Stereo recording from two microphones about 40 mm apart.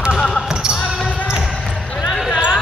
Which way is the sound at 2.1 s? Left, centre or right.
Centre.